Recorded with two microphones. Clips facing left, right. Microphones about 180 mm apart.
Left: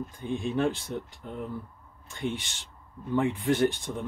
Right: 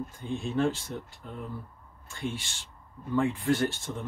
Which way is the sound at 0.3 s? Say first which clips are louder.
Left 1 dB; 15° left (ahead or behind).